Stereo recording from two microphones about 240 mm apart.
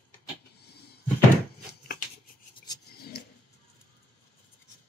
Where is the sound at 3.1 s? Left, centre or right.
Left.